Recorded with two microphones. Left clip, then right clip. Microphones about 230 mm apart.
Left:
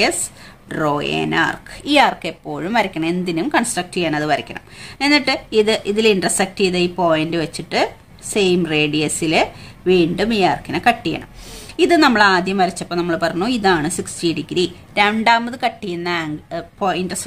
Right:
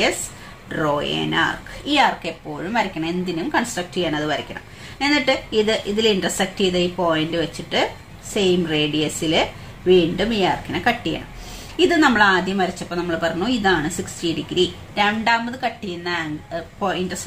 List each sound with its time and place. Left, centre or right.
0.7 s a woman's voice: left